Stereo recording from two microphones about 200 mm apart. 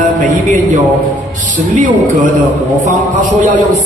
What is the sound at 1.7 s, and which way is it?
Speech, 40° right (ahead or behind).